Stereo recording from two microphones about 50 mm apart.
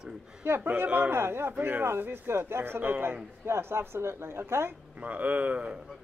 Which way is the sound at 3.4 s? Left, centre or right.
Right.